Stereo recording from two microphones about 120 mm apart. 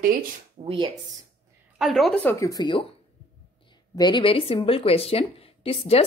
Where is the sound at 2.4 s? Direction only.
30° left (ahead or behind).